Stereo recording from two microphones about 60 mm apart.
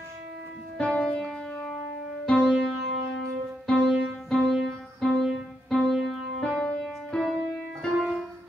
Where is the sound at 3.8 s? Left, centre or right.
Centre.